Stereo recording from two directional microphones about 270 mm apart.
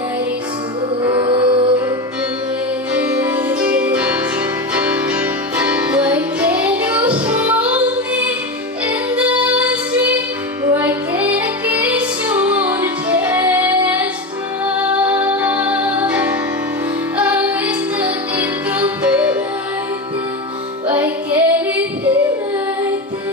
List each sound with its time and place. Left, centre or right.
1.0 s music: centre
2.9 s music: centre
21.0 s music: centre